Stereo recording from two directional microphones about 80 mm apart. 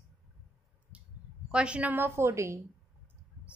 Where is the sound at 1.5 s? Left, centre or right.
Centre.